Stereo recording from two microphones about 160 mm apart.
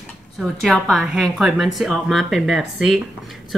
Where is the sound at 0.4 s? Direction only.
Centre (ahead or behind).